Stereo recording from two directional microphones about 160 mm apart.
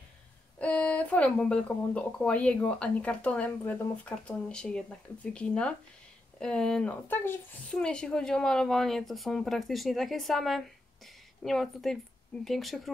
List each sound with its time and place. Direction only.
0.6 s speech: 5° left (ahead or behind)